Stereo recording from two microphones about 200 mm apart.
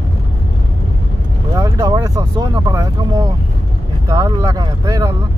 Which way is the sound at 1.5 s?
20° right (ahead or behind).